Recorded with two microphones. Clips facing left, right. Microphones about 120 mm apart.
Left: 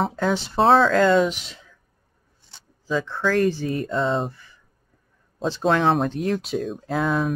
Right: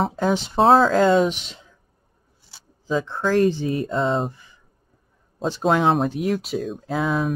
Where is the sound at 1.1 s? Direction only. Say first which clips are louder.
Right 1 dB; 25° right (ahead or behind).